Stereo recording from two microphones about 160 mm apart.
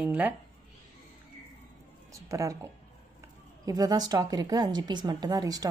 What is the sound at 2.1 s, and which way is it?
A woman's voice, 20° right (ahead or behind).